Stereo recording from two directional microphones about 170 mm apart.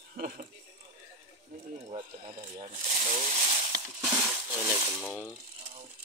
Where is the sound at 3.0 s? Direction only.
40° right (ahead or behind).